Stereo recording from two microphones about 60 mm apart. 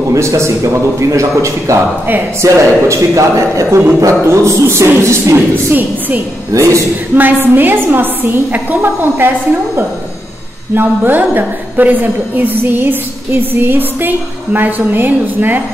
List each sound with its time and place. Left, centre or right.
0.1 s a man's voice: right
5.7 s a woman's voice: right
6.5 s a man's voice: right
7.2 s a woman's voice: right
10.7 s a woman's voice: right